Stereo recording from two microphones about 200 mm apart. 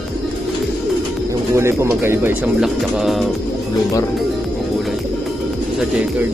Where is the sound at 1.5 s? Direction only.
15° right (ahead or behind).